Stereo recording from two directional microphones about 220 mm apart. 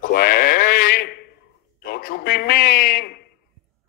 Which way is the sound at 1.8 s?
40° left (ahead or behind).